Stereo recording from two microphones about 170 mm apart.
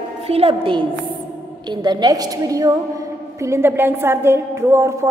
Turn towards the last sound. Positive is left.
turn(degrees=-15)  # may be behind; listen again after turning